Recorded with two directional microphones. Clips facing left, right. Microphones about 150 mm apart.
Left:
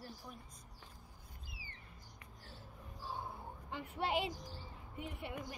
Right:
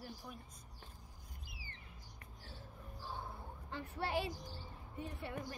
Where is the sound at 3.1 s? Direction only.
15° left (ahead or behind).